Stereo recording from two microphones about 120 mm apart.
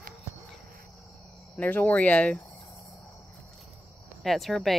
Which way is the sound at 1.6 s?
15° left (ahead or behind).